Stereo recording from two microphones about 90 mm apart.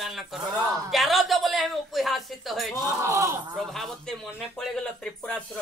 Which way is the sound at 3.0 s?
35° right (ahead or behind).